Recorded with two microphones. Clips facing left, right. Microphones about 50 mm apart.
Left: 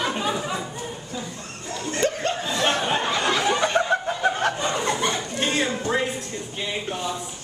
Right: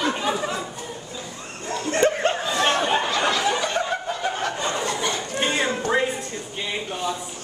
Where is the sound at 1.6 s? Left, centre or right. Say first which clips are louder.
Right 4 dB; right.